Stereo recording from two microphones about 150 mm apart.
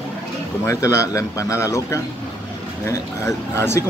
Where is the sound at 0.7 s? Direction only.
20° left (ahead or behind).